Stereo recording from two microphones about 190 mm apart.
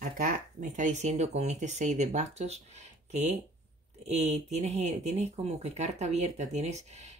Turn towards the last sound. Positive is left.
turn(degrees=-35)  # may be behind; listen again after turning